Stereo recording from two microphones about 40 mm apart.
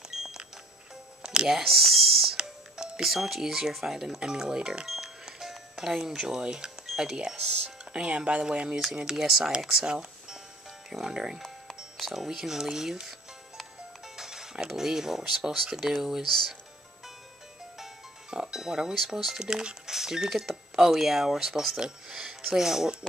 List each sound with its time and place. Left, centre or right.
0.1 s music: centre
1.2 s music: right
1.7 s speech: centre
2.3 s doorbell: centre
3.8 s speech: centre
4.8 s music: centre
7.0 s speech: centre
8.9 s speech: centre
10.9 s speech: centre
14.0 s music: centre
15.7 s speech: centre
16.3 s speech: centre
18.3 s music: centre
19.0 s speech: centre